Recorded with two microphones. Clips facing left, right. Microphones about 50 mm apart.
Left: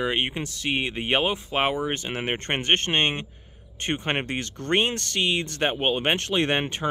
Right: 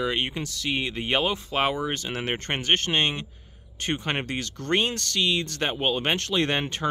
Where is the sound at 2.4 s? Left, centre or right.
Left.